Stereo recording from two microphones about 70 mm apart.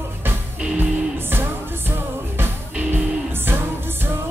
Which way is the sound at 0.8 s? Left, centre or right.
Right.